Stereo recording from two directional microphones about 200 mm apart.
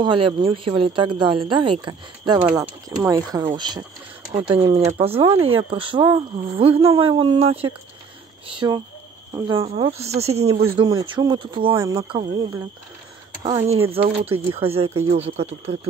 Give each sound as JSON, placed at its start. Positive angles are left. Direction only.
{"t": 0.0, "sound": "speech", "side_deg": -25}